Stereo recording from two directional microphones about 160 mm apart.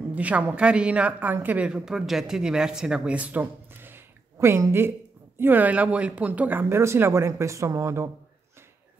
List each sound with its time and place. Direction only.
0.1 s a woman's voice: 10° right (ahead or behind)